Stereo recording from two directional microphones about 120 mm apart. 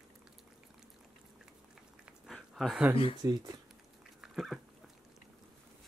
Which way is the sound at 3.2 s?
35° right (ahead or behind).